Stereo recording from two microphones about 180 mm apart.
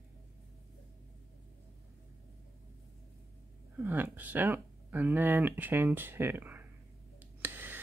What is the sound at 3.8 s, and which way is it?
Speech, 10° right (ahead or behind).